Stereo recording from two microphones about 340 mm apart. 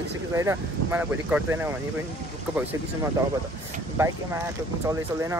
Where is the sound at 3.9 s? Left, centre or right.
Centre.